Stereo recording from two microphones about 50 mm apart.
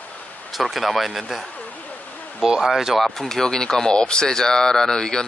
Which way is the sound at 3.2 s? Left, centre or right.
Centre.